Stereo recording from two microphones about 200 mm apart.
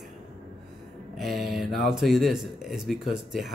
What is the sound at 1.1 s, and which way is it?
Speech, centre (ahead or behind).